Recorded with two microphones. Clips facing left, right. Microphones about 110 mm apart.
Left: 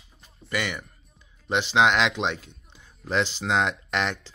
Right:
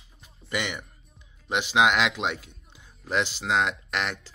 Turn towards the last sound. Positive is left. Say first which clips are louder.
# left 3 dB
turn(degrees=-5)  # may be behind; listen again after turning